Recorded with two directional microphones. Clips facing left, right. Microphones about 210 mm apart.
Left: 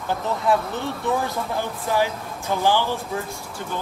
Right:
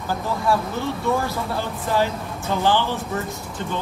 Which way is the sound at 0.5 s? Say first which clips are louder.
Even; 20° left (ahead or behind).